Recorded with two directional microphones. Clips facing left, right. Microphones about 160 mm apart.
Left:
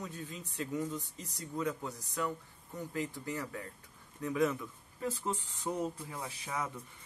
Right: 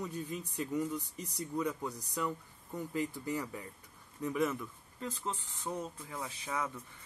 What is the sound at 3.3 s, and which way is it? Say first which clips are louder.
Speech: right 2 dB; 15° right (ahead or behind).